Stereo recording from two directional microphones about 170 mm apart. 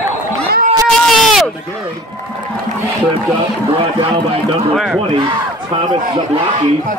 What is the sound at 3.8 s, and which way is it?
Speech, 35° right (ahead or behind).